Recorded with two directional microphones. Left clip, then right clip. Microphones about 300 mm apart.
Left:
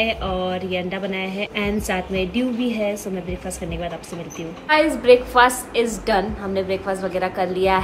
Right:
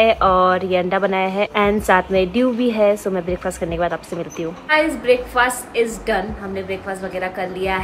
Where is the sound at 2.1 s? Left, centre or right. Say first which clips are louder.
Right 6 dB; centre.